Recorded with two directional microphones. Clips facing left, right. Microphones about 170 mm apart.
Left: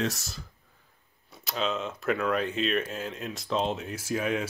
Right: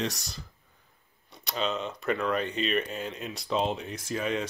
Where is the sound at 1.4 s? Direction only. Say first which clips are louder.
Even; centre (ahead or behind).